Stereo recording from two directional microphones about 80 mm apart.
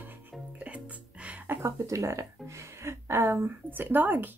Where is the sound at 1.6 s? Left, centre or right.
Right.